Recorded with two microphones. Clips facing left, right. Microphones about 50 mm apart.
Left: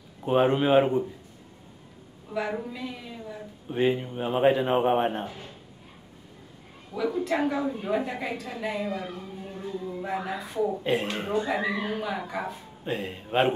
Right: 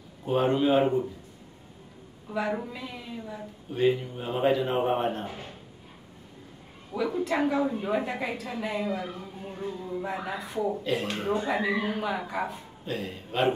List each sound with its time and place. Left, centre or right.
0.2 s speech: left
2.3 s a woman's voice: centre
3.7 s speech: left
5.2 s speech: right
6.9 s a woman's voice: centre
9.1 s a sound: centre
9.8 s speech: centre
10.8 s speech: left
11.3 s a woman's voice: centre
12.8 s speech: left